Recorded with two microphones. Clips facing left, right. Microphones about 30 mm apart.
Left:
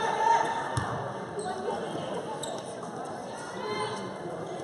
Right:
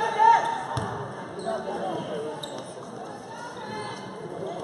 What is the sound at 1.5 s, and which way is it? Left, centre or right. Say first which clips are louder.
Basketball bounce: right 5 dB; centre.